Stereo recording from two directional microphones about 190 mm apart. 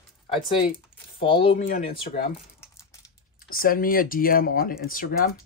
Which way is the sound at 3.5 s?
50° left (ahead or behind).